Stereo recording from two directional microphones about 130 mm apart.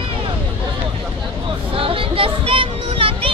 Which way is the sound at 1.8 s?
45° right (ahead or behind).